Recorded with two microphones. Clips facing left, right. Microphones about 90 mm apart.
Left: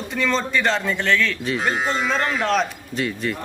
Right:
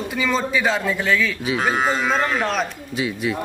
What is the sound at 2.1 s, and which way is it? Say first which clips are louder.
A man's voice: even; 5° right (ahead or behind).